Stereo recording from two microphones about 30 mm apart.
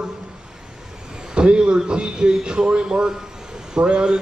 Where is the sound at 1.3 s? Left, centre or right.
Right.